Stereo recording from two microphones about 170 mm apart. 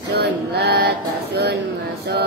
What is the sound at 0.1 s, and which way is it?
Female singing, 70° right (ahead or behind).